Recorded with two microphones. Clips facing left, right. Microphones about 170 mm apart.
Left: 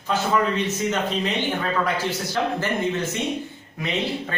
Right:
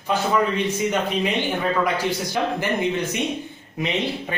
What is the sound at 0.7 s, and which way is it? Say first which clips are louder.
Speech: right 2 dB; 10° right (ahead or behind).